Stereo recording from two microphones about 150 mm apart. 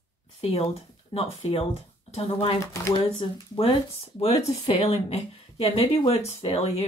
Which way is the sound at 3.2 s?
35° left (ahead or behind).